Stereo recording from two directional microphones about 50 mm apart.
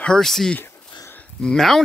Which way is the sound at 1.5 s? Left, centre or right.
Centre.